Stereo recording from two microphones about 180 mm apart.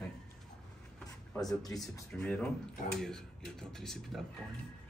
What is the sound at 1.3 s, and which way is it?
Speech, 20° left (ahead or behind).